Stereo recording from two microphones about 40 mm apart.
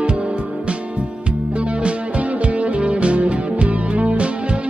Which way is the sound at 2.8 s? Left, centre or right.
Right.